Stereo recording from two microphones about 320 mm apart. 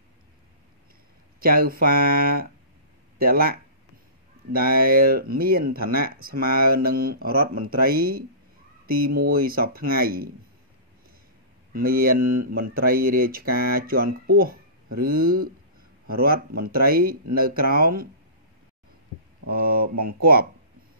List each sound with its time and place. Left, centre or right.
1.4 s speech: right
11.7 s speech: right
19.4 s speech: right